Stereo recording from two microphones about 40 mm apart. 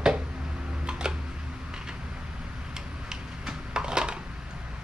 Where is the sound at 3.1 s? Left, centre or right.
Centre.